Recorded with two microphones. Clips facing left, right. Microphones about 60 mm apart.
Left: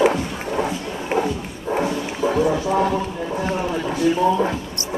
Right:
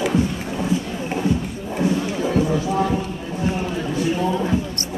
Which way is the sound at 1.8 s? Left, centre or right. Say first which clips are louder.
Right 2 dB; left.